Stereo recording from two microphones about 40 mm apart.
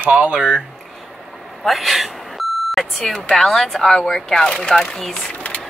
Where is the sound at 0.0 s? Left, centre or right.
Right.